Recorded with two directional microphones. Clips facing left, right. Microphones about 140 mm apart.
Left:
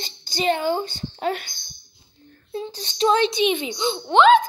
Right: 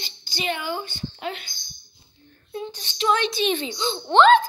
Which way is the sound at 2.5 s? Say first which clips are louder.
Left 2 dB; 30° left (ahead or behind).